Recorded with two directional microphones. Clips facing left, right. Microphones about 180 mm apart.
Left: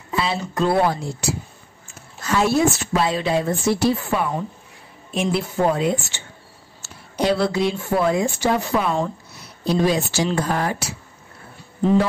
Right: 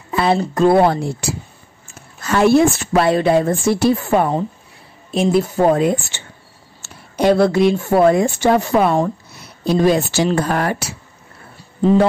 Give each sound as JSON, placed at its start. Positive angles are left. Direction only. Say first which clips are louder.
{"t": 0.1, "sound": "a woman's voice", "louder": "right 7 dB", "side_deg": -55}
{"t": 2.2, "sound": "a woman's voice", "louder": "right 6 dB", "side_deg": -60}
{"t": 5.1, "sound": "a woman's voice", "louder": "right 6 dB", "side_deg": -40}